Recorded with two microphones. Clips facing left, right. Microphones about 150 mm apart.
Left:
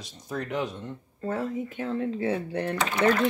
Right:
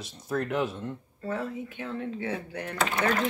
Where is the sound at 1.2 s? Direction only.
40° left (ahead or behind).